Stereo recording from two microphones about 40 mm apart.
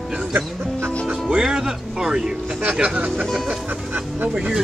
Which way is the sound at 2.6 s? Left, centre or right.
Right.